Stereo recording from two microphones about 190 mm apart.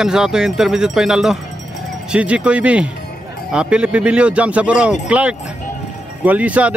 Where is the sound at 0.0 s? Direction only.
5° right (ahead or behind).